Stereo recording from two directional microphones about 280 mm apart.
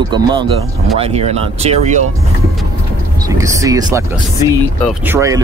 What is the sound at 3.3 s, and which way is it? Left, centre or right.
Speech, centre.